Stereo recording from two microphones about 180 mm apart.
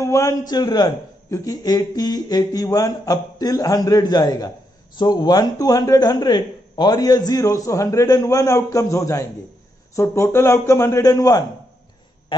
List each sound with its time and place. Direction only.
0.0 s a man's voice: 15° left (ahead or behind)